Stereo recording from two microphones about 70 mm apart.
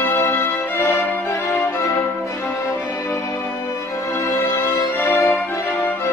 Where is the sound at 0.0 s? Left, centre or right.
Left.